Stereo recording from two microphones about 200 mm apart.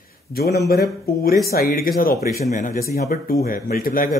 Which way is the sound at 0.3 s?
50° left (ahead or behind).